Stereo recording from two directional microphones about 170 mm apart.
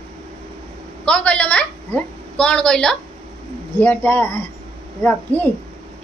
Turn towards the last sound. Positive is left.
turn(degrees=10)  # may be behind; listen again after turning